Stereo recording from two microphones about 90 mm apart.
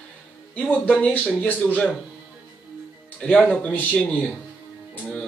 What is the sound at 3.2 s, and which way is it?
Speech, 15° left (ahead or behind).